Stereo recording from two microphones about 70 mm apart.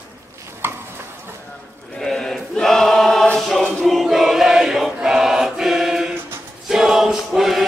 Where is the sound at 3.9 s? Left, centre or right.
Centre.